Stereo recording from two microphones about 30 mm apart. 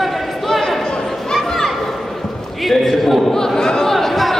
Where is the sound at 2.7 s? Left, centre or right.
Centre.